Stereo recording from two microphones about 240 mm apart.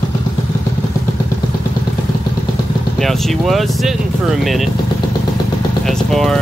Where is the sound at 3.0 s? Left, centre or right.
Centre.